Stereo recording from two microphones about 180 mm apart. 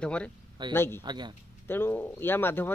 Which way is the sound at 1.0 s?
25° right (ahead or behind).